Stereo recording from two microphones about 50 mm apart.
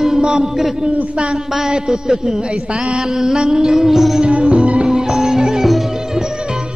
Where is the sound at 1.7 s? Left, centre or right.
Centre.